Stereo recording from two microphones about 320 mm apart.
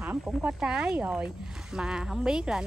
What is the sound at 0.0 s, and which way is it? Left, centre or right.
Speech, centre.